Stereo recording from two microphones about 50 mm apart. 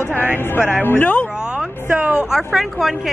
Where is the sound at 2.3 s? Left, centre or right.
Centre.